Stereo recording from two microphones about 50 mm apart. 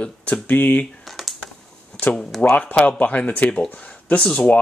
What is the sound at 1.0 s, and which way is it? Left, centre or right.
Computer keyboard, centre.